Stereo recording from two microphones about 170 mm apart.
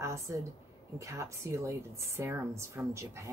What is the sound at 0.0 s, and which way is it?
A woman's voice, 15° right (ahead or behind).